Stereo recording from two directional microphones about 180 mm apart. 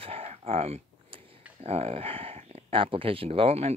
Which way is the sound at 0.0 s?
35° right (ahead or behind).